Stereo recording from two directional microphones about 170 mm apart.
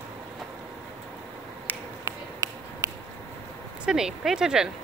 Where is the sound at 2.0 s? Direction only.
20° right (ahead or behind).